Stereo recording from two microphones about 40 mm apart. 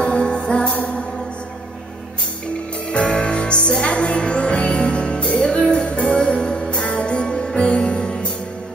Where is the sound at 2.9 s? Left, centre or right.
Left.